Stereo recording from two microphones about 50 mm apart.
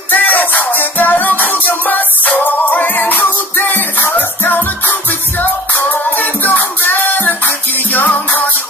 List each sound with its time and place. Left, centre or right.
0.1 s music: left